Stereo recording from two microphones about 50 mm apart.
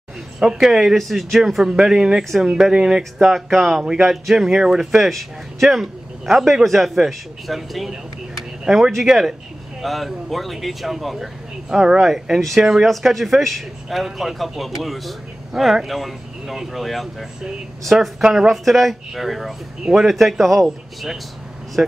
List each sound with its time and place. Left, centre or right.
0.4 s speech: centre
3.2 s a man's voice: centre
3.8 s a man's voice: centre
11.7 s speech: centre
12.0 s a man's voice: centre
18.2 s speech: centre
18.5 s a man's voice: centre
19.8 s speech: centre
20.1 s a man's voice: centre
21.8 s speech: centre